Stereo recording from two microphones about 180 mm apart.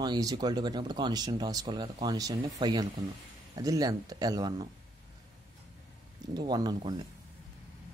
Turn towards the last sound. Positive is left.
turn(degrees=-25)  # may be behind; listen again after turning